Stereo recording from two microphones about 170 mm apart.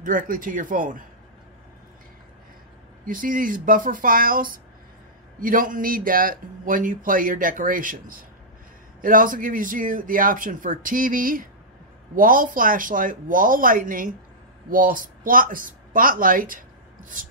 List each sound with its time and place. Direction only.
0.0 s speech: 55° right (ahead or behind)
3.1 s speech: 55° right (ahead or behind)